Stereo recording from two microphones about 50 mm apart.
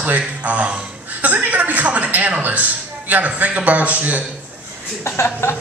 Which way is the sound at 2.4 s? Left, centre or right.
Right.